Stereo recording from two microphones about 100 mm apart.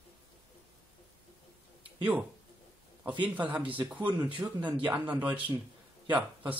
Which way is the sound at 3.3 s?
15° right (ahead or behind).